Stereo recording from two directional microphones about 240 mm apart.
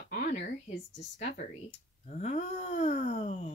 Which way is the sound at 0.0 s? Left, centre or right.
Left.